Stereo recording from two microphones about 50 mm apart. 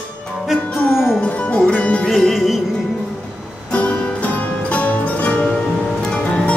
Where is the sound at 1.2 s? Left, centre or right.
Left.